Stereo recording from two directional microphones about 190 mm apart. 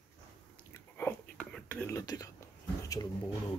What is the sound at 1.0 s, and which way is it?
Whispering, 10° left (ahead or behind).